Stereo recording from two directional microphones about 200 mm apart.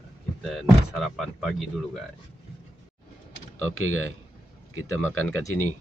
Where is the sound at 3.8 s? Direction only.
90° left.